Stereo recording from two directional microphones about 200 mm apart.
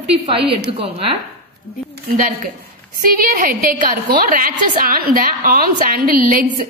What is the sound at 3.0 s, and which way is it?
A woman's voice, 45° right (ahead or behind).